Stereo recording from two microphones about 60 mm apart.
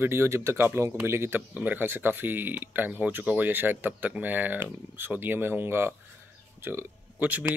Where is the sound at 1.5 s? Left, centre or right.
Right.